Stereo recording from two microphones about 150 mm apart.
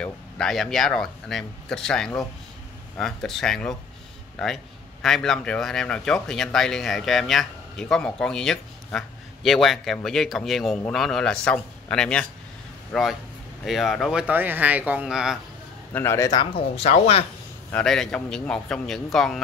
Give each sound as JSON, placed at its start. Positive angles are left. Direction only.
{"t": 0.0, "sound": "speech", "side_deg": 5}
{"t": 14.2, "sound": "speech", "side_deg": -10}
{"t": 15.9, "sound": "a man's voice", "side_deg": 15}
{"t": 16.5, "sound": "speech", "side_deg": 40}
{"t": 17.6, "sound": "speech", "side_deg": 5}